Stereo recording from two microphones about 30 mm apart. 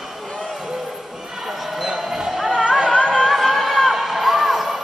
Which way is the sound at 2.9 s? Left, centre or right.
Left.